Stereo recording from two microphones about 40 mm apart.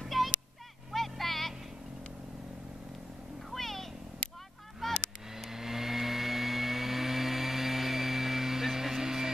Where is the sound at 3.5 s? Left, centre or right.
Centre.